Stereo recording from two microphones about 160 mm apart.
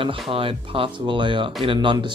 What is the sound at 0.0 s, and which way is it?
Speech, 35° right (ahead or behind).